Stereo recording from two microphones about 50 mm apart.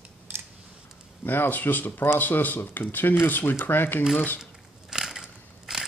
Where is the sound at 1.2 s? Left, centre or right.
Left.